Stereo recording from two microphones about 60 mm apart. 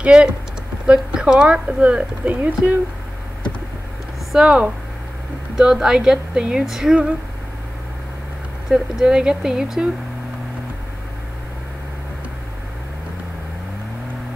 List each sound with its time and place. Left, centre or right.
0.0 s a woman's voice: centre
4.3 s a woman's voice: centre
8.6 s a woman's voice: centre